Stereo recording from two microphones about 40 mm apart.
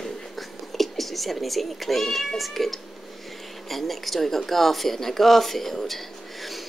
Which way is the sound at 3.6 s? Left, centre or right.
Centre.